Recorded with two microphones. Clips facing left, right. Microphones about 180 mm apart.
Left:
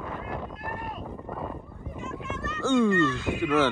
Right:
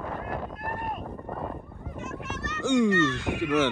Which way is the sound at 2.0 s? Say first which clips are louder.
Left 1 dB; 75° right (ahead or behind).